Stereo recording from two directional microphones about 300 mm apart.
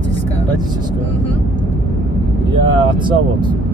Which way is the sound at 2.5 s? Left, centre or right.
Centre.